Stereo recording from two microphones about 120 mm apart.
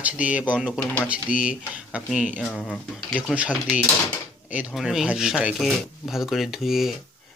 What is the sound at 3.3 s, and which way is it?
Speech, 10° right (ahead or behind).